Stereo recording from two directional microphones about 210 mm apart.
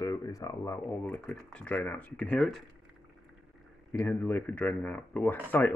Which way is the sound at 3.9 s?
5° left (ahead or behind).